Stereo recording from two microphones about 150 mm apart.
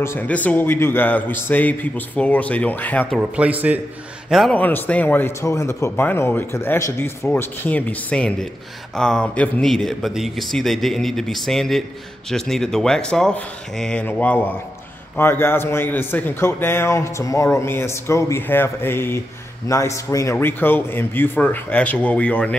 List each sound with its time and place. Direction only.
0.0 s a man's voice: 15° left (ahead or behind)
3.2 s a man's voice: 10° right (ahead or behind)
4.3 s speech: centre (ahead or behind)
4.6 s a man's voice: 10° left (ahead or behind)